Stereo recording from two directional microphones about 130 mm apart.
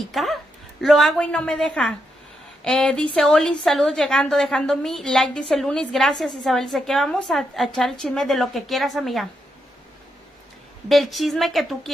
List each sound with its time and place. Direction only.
0.0 s a woman's voice: centre (ahead or behind)
10.9 s a woman's voice: centre (ahead or behind)